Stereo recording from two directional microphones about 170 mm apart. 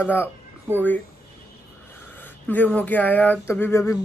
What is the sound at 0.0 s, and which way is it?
Speech, 10° left (ahead or behind).